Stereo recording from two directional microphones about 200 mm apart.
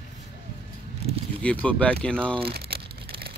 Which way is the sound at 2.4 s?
50° right (ahead or behind).